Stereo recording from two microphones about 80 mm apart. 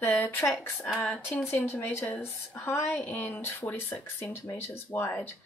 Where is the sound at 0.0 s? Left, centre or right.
Left.